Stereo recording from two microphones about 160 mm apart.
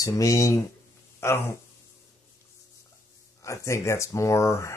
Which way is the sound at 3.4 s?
20° left (ahead or behind).